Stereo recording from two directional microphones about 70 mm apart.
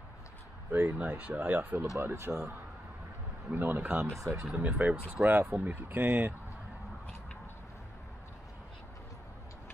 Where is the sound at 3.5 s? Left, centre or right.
Right.